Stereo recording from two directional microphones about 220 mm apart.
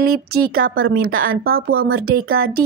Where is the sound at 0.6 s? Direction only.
65° right (ahead or behind).